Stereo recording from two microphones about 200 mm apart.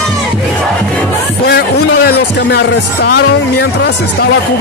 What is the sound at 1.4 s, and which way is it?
Speech, 50° left (ahead or behind).